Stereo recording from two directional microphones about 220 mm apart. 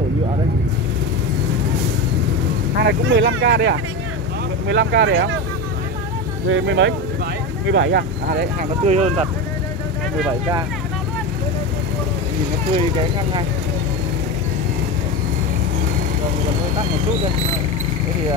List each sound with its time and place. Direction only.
2.8 s speech: 50° right (ahead or behind)
6.5 s speech: 55° right (ahead or behind)
8.8 s speech: 30° right (ahead or behind)